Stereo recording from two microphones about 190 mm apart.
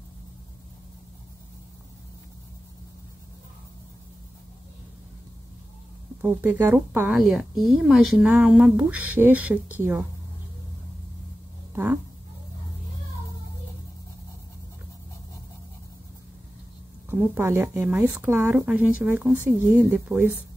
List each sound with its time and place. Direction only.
6.2 s speech: 10° right (ahead or behind)
11.7 s speech: 10° right (ahead or behind)
17.1 s speech: 10° right (ahead or behind)